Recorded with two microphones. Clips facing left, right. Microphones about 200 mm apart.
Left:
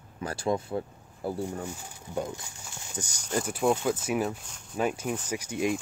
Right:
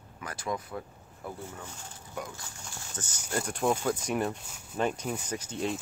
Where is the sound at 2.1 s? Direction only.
15° left (ahead or behind).